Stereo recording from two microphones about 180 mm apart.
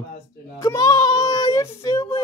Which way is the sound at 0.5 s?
20° left (ahead or behind).